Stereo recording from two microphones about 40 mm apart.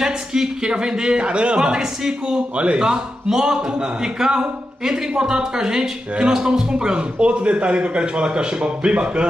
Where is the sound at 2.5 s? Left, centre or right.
Right.